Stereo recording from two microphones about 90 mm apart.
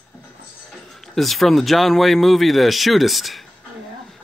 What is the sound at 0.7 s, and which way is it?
Speech, centre (ahead or behind).